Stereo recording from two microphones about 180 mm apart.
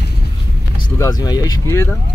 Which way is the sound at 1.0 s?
20° left (ahead or behind).